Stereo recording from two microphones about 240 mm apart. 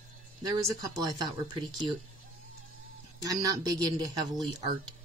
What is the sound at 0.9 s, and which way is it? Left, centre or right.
Speech, centre.